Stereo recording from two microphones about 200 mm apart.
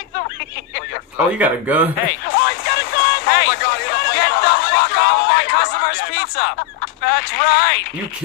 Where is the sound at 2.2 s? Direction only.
55° left (ahead or behind).